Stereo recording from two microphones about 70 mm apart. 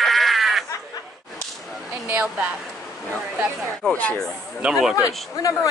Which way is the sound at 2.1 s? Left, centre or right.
Right.